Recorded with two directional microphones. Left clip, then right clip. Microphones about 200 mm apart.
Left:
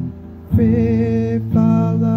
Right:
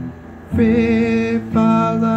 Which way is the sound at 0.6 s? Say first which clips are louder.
Right 2 dB; 35° left (ahead or behind).